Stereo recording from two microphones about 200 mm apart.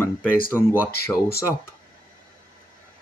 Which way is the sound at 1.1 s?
15° left (ahead or behind).